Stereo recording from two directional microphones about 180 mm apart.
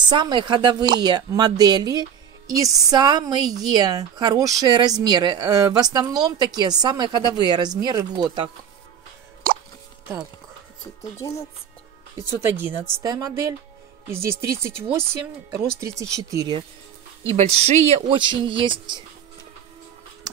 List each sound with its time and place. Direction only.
0.1 s speech: 25° right (ahead or behind)
11.0 s speech: 15° left (ahead or behind)
12.2 s speech: 10° right (ahead or behind)
16.0 s speech: 15° right (ahead or behind)
17.4 s speech: 35° right (ahead or behind)